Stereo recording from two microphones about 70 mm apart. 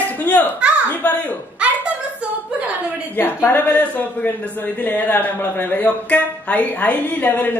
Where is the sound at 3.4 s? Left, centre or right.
Left.